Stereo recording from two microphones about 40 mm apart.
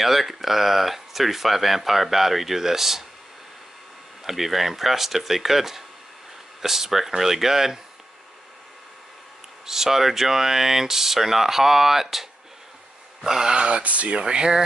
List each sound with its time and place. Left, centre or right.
0.0 s speech: centre
4.2 s speech: centre
9.7 s speech: centre
13.7 s speech: right
14.2 s speech: centre